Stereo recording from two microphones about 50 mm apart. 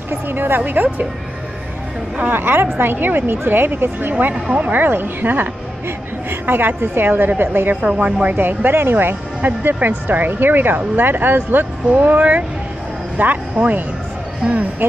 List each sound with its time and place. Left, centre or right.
0.1 s a woman's voice: right
2.1 s a woman's voice: right
4.5 s a woman's voice: right
7.7 s speech: right
14.8 s a woman's voice: right